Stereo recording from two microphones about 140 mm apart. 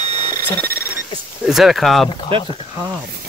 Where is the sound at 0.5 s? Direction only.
15° left (ahead or behind).